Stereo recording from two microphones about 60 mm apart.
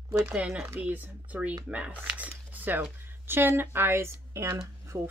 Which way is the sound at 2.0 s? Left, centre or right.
Right.